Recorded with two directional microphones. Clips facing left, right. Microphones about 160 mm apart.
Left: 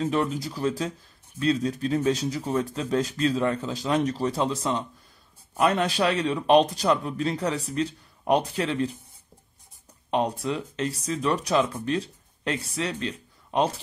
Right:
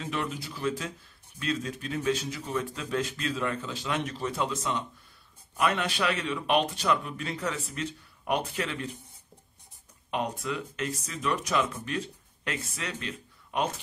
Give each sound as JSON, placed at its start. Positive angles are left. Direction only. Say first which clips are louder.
{"t": 0.0, "sound": "speech", "louder": "left 8 dB", "side_deg": 40}
{"t": 10.1, "sound": "speech", "louder": "left 6 dB", "side_deg": 30}